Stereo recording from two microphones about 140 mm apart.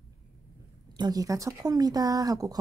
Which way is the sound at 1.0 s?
25° right (ahead or behind).